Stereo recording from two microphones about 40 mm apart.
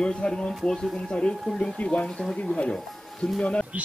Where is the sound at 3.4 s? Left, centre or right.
Left.